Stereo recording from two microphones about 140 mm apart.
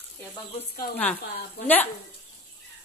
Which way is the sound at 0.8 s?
90° left.